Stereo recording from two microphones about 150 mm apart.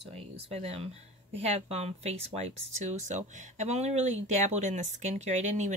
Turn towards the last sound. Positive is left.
turn(degrees=-50)  # may be behind; listen again after turning